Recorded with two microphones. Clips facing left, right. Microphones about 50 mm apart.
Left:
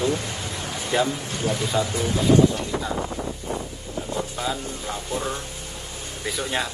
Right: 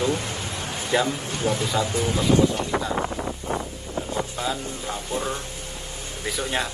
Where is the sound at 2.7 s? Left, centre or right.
Right.